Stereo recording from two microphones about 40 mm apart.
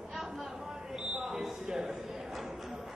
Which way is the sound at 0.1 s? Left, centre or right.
Centre.